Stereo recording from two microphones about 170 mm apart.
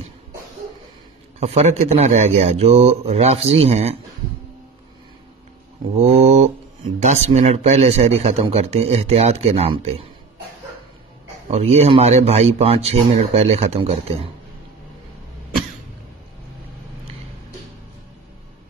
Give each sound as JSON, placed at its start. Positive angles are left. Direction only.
{"t": 1.4, "sound": "a man's voice", "side_deg": -40}
{"t": 5.9, "sound": "a man's voice", "side_deg": -40}
{"t": 11.5, "sound": "a man's voice", "side_deg": -40}